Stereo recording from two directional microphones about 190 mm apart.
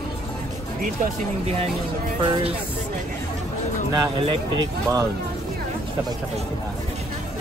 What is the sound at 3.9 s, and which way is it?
Speech, 25° right (ahead or behind).